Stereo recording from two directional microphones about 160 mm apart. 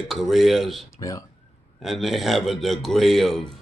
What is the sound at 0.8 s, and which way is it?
Speech, 20° left (ahead or behind).